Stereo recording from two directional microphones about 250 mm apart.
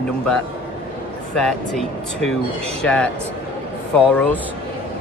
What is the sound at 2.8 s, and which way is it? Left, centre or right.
Speech, centre.